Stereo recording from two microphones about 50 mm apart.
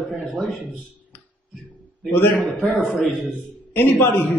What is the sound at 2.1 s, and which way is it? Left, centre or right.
Speech, left.